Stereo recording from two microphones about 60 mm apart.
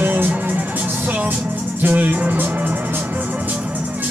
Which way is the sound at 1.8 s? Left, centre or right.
Right.